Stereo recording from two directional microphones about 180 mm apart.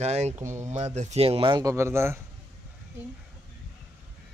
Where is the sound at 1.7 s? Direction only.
15° right (ahead or behind).